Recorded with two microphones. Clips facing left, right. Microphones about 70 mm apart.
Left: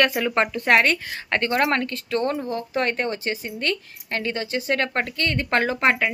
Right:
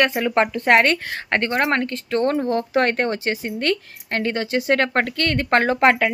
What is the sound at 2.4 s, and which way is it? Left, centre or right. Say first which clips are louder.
Speech: right 5 dB; right.